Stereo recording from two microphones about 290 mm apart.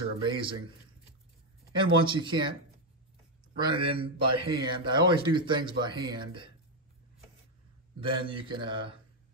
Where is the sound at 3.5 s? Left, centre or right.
Centre.